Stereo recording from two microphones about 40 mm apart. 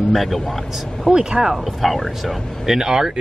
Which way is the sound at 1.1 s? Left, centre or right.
Centre.